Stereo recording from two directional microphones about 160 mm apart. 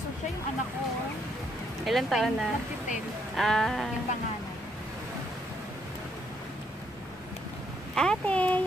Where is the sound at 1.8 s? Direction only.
Centre (ahead or behind).